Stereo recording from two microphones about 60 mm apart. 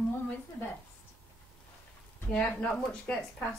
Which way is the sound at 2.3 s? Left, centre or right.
Centre.